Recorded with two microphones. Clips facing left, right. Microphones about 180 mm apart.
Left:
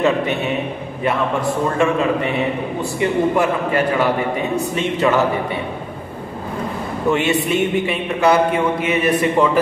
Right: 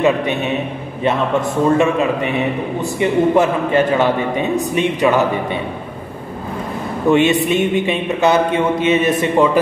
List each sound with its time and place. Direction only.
0.0 s a man's voice: 20° right (ahead or behind)
7.1 s a man's voice: 20° right (ahead or behind)